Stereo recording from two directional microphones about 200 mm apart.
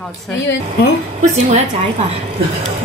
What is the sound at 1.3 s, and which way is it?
Speech, 35° right (ahead or behind).